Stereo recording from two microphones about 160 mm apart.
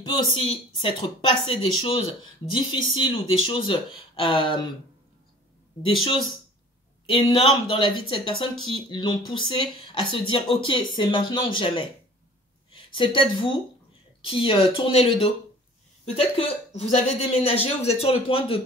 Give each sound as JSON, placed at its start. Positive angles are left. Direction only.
{"t": 0.0, "sound": "speech", "side_deg": 30}
{"t": 5.8, "sound": "speech", "side_deg": 35}